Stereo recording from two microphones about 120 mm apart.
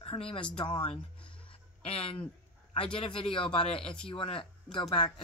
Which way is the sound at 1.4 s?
50° left (ahead or behind).